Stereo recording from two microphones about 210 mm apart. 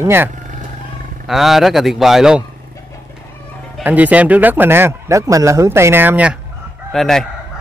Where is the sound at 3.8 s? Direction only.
5° right (ahead or behind).